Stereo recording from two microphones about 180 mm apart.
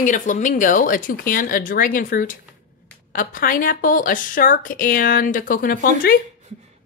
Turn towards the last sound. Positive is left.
turn(degrees=55)  # may be behind; listen again after turning